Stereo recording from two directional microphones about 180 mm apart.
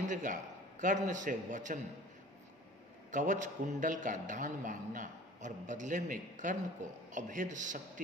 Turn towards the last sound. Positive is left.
turn(degrees=-45)  # may be behind; listen again after turning